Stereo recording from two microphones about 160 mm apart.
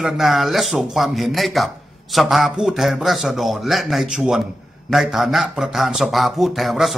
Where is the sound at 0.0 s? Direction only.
Centre (ahead or behind).